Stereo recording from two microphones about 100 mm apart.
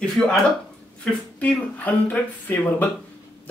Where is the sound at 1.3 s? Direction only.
15° left (ahead or behind).